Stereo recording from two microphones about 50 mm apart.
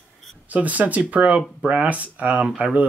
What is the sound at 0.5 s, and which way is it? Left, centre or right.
Speech, right.